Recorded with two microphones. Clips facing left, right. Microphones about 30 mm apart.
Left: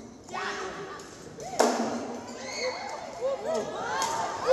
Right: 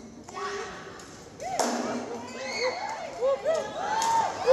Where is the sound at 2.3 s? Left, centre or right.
Right.